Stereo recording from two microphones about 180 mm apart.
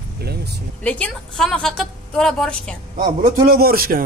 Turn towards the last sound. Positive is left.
turn(degrees=-55)  # may be behind; listen again after turning